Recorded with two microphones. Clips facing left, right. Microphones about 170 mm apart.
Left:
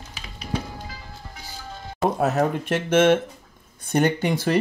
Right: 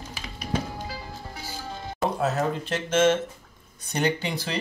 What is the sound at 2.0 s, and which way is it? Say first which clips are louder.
Speech: left 4 dB; 55° left (ahead or behind).